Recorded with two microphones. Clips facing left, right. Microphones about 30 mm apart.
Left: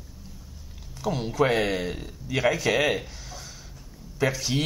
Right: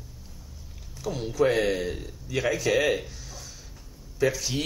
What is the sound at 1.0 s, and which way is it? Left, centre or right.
Speech, left.